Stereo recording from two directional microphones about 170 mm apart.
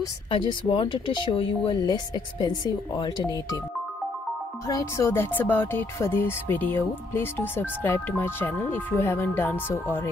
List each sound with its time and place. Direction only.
0.0 s speech: 30° left (ahead or behind)
4.6 s music: 20° left (ahead or behind)